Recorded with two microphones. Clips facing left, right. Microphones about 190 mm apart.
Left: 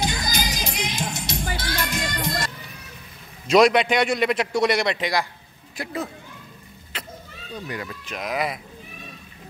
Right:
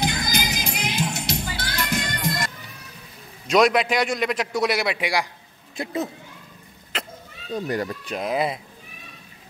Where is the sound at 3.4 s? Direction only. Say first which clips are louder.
Left 2 dB; centre (ahead or behind).